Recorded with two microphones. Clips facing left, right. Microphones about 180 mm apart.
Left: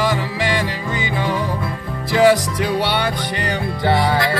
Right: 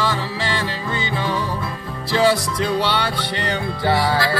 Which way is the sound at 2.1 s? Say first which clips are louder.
Left 4 dB; 15° left (ahead or behind).